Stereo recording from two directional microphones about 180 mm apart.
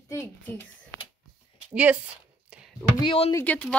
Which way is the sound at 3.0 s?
30° left (ahead or behind).